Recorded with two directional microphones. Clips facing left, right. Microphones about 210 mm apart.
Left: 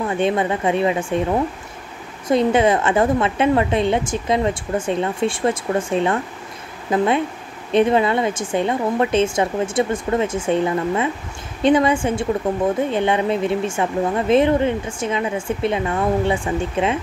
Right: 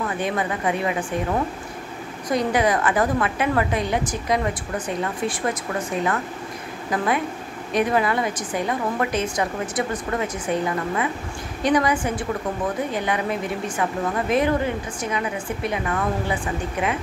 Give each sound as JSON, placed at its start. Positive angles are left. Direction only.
{"t": 0.0, "sound": "a woman's voice", "side_deg": 25}